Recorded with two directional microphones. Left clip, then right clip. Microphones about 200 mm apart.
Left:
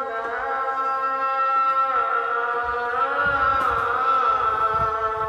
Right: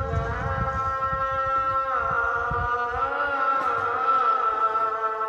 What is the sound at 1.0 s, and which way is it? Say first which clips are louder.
Music: left 3 dB; 50° left (ahead or behind).